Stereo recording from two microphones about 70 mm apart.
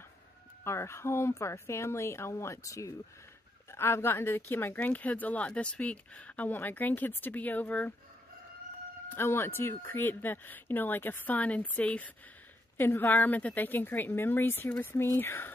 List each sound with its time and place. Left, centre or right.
0.7 s speech: left
3.7 s speech: left
9.1 s speech: left; by 12.1 s centre
12.7 s speech: left